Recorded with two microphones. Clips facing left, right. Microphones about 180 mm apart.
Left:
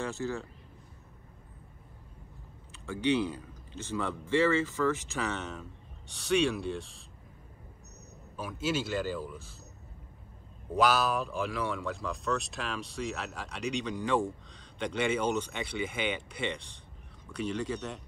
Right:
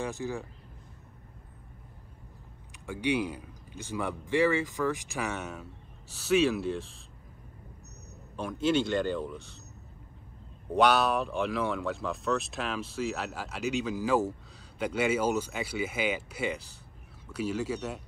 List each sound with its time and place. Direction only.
0.0 s speech: 15° right (ahead or behind)
2.7 s a man's voice: 15° right (ahead or behind)
8.4 s speech: 5° left (ahead or behind)
10.7 s speech: centre (ahead or behind)